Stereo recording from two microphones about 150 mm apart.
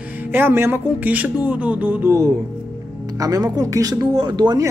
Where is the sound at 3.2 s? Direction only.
25° right (ahead or behind).